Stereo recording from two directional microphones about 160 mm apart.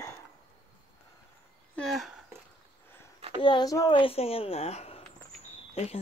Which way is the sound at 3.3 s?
30° left (ahead or behind).